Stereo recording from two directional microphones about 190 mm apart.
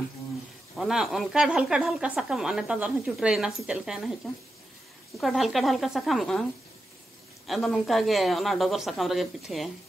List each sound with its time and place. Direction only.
0.7 s speech: centre (ahead or behind)
5.2 s speech: centre (ahead or behind)
7.4 s speech: centre (ahead or behind)